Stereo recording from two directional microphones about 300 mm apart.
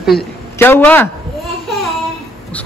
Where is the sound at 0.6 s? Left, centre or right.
Centre.